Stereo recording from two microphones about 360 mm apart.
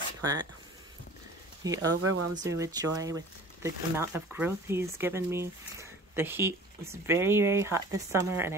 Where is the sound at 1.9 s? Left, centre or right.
Right.